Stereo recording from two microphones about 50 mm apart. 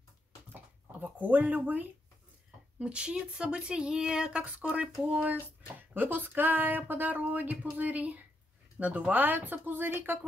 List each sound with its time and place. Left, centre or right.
1.0 s speech: right
2.8 s speech: right